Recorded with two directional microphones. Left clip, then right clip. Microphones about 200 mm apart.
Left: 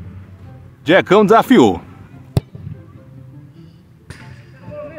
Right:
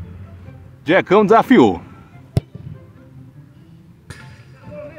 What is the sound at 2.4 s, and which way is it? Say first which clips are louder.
Music: left 2 dB; 30° left (ahead or behind).